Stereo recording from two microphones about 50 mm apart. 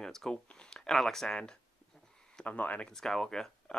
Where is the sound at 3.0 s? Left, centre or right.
Centre.